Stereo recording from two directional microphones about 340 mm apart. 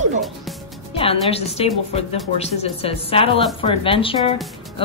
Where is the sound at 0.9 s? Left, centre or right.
Centre.